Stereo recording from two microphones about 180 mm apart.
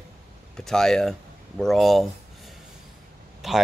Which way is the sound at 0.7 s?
5° left (ahead or behind).